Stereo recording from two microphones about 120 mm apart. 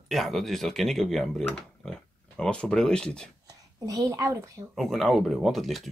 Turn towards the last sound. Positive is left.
turn(degrees=0)  # may be behind; listen again after turning